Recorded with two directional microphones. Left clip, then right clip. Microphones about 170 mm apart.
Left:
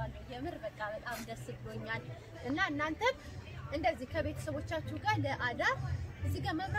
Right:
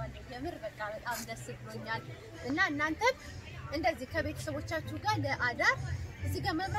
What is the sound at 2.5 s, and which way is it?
A woman's voice, 5° left (ahead or behind).